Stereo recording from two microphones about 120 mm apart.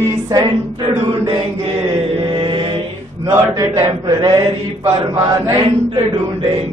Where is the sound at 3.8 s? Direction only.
30° right (ahead or behind).